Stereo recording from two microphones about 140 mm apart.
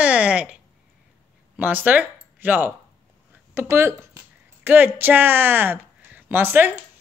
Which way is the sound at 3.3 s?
15° right (ahead or behind).